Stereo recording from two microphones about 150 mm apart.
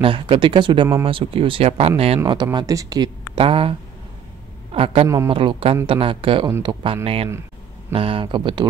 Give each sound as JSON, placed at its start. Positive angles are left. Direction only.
{"t": 0.0, "sound": "speech", "side_deg": -35}
{"t": 2.2, "sound": "speech", "side_deg": -30}
{"t": 3.3, "sound": "speech", "side_deg": -35}
{"t": 4.7, "sound": "speech", "side_deg": -40}
{"t": 5.0, "sound": "speech", "side_deg": -20}
{"t": 5.3, "sound": "speech", "side_deg": -35}